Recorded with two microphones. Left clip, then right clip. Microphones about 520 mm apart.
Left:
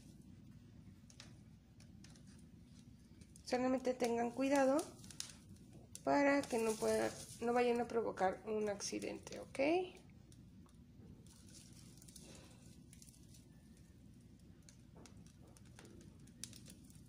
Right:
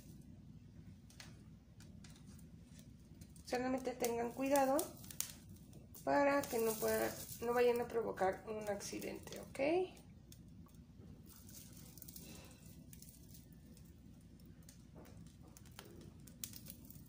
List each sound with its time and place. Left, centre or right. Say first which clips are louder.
3.4 s speech: left 3 dB; left
6.0 s speech: even; left
7.2 s speech: even; centre
7.7 s speech: left 1 dB; left